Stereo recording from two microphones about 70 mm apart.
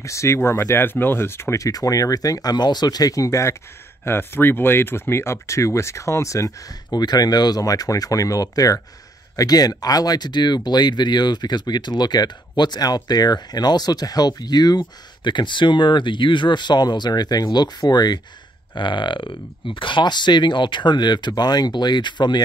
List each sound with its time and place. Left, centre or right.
0.0 s speech: left
1.6 s speech: left
4.0 s speech: left
6.9 s speech: left
20.0 s speech: left